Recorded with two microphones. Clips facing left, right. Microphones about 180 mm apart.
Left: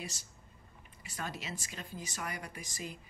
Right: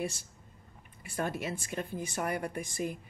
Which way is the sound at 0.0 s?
55° right (ahead or behind).